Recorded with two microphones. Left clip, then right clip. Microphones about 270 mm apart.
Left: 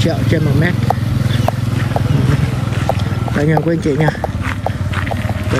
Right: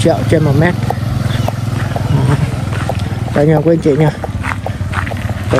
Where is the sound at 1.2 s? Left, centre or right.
Centre.